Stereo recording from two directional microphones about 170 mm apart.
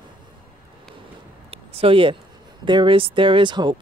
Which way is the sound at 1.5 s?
35° right (ahead or behind).